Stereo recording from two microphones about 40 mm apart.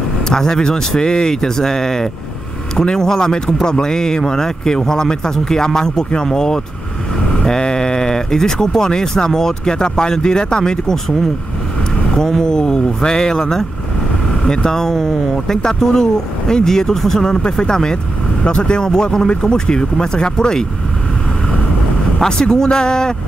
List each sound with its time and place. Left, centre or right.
0.3 s speech: centre
12.2 s speech: centre
22.2 s speech: centre